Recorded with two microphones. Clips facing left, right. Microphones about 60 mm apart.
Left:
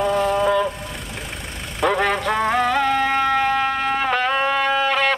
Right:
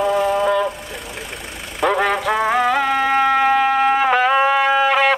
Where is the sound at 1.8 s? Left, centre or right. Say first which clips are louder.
Right 2 dB; centre.